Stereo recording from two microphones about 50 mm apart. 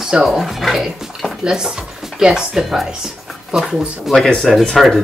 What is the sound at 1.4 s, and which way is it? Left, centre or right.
A woman's voice, centre.